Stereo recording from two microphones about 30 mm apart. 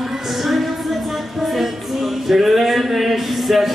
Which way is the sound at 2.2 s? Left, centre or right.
Centre.